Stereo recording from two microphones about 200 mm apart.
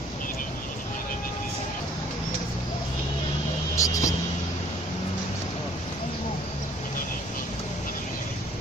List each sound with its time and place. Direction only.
3.7 s vehicle: 15° left (ahead or behind)